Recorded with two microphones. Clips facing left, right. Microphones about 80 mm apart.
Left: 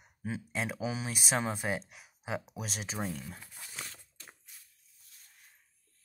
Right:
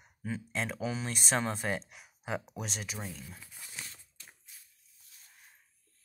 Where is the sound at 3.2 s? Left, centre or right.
Left.